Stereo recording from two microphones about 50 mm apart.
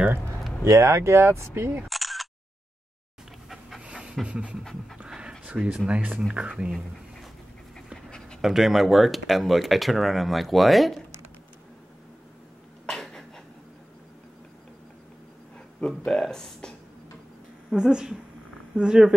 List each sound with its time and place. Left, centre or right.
0.7 s speech: right
1.9 s single-lens reflex camera: centre
3.8 s pant: centre
5.4 s a sound: centre
5.9 s speech: right
8.4 s speech: centre
12.8 s a sound: centre
16.1 s speech: centre
17.6 s speech: centre